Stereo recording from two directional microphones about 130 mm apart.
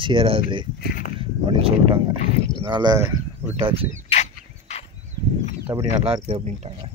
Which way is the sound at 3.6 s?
45° right (ahead or behind).